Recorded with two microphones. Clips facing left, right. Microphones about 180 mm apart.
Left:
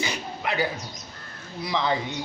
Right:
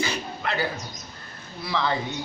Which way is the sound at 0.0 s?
15° left (ahead or behind).